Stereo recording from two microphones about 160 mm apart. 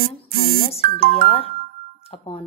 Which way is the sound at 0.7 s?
40° left (ahead or behind).